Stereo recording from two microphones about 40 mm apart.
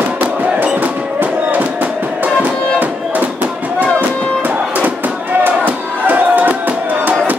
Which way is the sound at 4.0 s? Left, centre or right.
Right.